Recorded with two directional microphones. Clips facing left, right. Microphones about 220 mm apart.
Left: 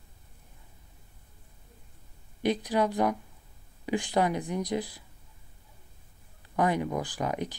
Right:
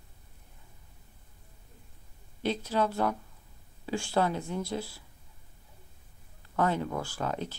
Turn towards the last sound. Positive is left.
turn(degrees=15)  # may be behind; listen again after turning